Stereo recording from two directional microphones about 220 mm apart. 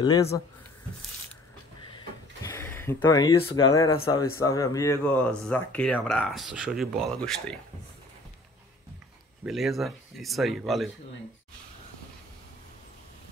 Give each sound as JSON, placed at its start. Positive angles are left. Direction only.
{"t": 0.0, "sound": "speech", "side_deg": 15}
{"t": 2.4, "sound": "speech", "side_deg": 10}
{"t": 9.4, "sound": "speech", "side_deg": 0}